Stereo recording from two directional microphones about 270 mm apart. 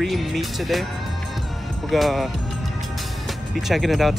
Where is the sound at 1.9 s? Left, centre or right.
Centre.